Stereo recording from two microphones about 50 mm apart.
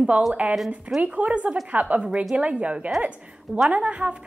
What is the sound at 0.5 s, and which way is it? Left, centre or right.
Speech, centre.